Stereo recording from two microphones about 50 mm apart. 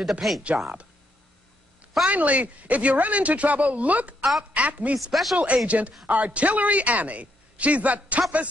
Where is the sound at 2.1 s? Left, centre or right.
Right.